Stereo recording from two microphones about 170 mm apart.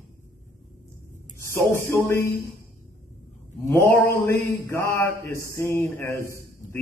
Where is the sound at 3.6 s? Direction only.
15° left (ahead or behind).